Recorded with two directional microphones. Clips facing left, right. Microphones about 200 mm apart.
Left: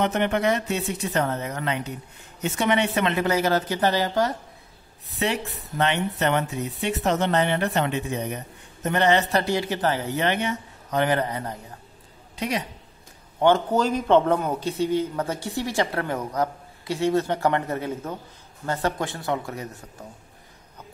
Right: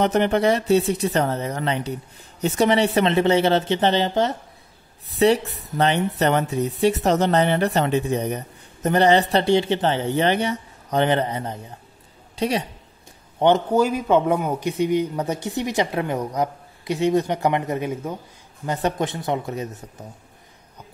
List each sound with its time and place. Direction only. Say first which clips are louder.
0.0 s speech: right 4 dB; 35° right (ahead or behind)
5.2 s speech: right 9 dB; 35° right (ahead or behind)
13.4 s speech: right 2 dB; 15° right (ahead or behind)